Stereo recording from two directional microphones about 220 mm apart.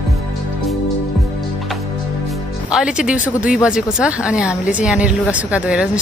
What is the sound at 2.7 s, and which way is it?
A woman's voice, 5° right (ahead or behind).